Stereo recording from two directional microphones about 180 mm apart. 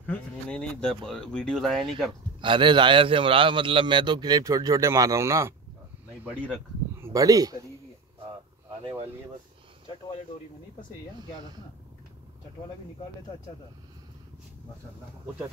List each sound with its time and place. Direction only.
0.0 s speech: 5° left (ahead or behind)
2.4 s a man's voice: 25° right (ahead or behind)
7.0 s speech: 15° right (ahead or behind)